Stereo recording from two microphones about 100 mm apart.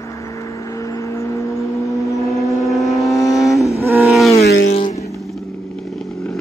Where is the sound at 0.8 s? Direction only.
30° left (ahead or behind).